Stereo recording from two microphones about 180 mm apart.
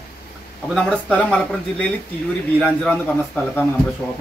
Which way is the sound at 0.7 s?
5° left (ahead or behind).